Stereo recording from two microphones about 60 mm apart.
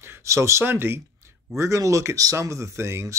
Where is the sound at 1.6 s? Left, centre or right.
Right.